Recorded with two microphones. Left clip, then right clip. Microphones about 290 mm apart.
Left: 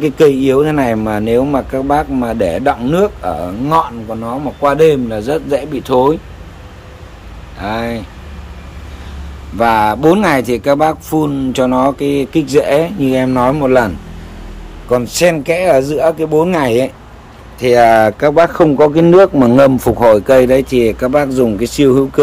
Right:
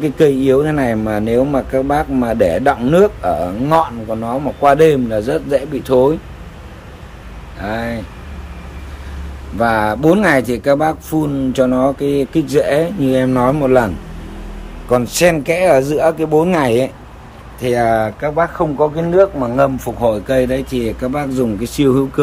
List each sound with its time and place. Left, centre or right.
0.0 s speech: centre
7.6 s speech: centre
9.6 s speech: centre
17.8 s speech: centre
19.6 s speech: left
20.2 s speech: centre